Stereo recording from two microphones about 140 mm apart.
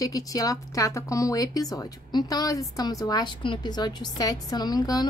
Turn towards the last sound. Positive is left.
turn(degrees=30)  # may be behind; listen again after turning